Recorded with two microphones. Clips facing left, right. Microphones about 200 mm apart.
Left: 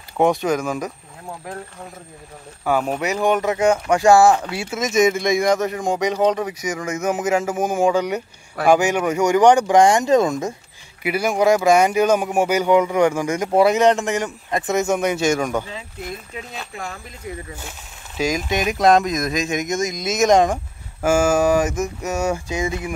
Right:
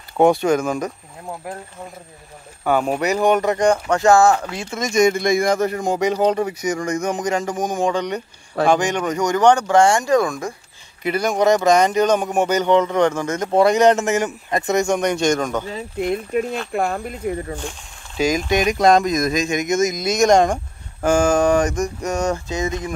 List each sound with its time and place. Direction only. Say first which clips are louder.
0.4 s speech: right 3 dB; centre (ahead or behind)
2.6 s speech: right 2 dB; centre (ahead or behind); by 10.5 s 20° left (ahead or behind)
11.0 s speech: even; 10° left (ahead or behind)
15.7 s speech: right 9 dB; 55° right (ahead or behind)
17.6 s speech: right 5 dB; 5° left (ahead or behind)